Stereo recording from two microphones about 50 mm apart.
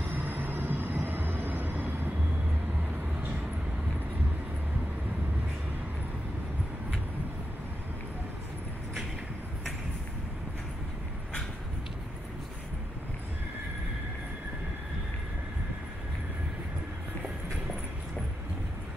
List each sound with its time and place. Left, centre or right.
0.0 s train: right